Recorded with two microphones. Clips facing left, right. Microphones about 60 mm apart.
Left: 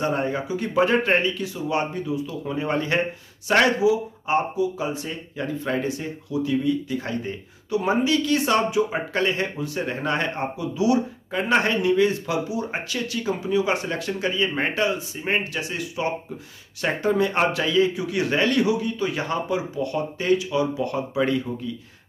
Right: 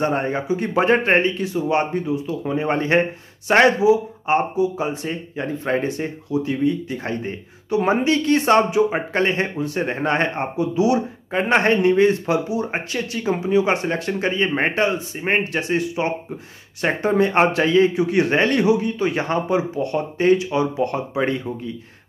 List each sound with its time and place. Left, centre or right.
0.0 s speech: right